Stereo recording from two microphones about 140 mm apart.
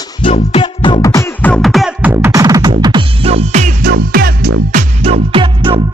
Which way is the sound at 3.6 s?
90° right.